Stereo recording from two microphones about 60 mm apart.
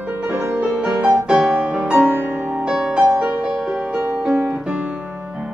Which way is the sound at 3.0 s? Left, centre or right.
Right.